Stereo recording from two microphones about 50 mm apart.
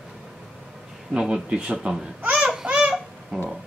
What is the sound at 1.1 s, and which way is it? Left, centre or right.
Speech, centre.